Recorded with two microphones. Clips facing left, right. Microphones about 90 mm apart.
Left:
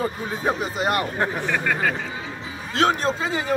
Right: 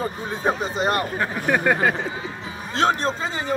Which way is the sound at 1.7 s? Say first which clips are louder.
Right 3 dB; 30° right (ahead or behind).